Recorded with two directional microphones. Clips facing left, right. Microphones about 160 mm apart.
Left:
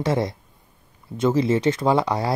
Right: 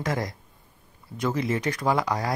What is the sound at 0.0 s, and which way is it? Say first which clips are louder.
Speech: left 6 dB; 30° left (ahead or behind).